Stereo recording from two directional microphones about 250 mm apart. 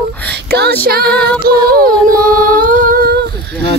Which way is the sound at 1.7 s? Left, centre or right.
Right.